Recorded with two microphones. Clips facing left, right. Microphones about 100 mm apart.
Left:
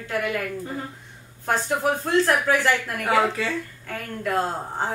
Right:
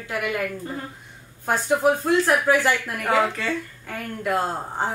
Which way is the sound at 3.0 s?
5° left (ahead or behind).